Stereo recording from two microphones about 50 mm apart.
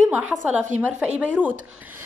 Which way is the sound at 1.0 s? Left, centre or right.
Right.